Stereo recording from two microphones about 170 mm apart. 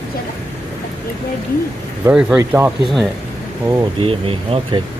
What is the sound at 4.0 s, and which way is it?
Speech, 35° right (ahead or behind).